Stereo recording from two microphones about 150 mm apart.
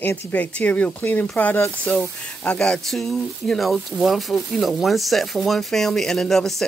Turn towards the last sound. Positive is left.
turn(degrees=5)  # may be behind; listen again after turning